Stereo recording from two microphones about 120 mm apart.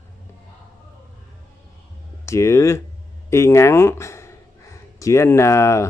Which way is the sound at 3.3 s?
20° left (ahead or behind).